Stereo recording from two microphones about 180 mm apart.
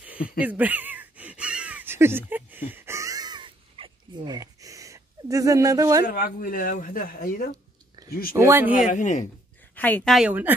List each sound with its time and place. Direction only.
0.0 s a sound: 10° right (ahead or behind)
6.0 s speech: 50° left (ahead or behind)
8.4 s a woman's voice: 15° right (ahead or behind)
8.9 s speech: 45° left (ahead or behind)
9.8 s a woman's voice: 10° left (ahead or behind)
10.1 s a woman's voice: 5° right (ahead or behind)